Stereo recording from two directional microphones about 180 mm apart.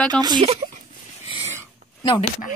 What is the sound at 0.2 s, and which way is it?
Speech, 25° right (ahead or behind).